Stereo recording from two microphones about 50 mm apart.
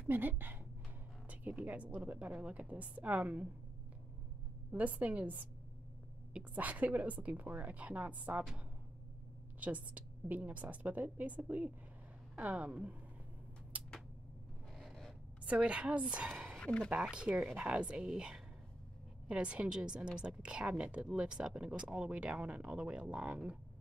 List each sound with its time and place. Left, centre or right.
0.1 s a woman's voice: right
1.6 s a woman's voice: right
4.7 s a woman's voice: right
9.6 s a woman's voice: right
13.7 s a sound: right
14.8 s writing: centre
15.5 s a woman's voice: right
16.5 s speech: left
17.0 s a woman's voice: centre